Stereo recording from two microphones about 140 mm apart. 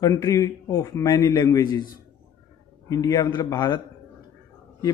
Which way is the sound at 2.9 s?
25° left (ahead or behind).